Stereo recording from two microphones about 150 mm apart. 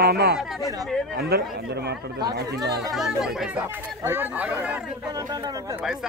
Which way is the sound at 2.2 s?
25° right (ahead or behind).